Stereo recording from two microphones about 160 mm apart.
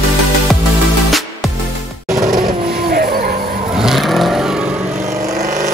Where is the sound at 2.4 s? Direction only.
30° right (ahead or behind).